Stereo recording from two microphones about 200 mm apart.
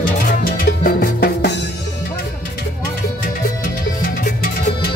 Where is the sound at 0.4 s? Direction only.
50° left (ahead or behind).